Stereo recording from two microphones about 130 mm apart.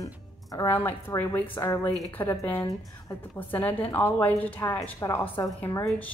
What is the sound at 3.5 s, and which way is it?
A woman's voice, 15° left (ahead or behind).